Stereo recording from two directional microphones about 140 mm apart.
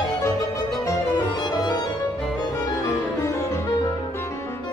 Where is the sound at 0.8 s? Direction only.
30° left (ahead or behind).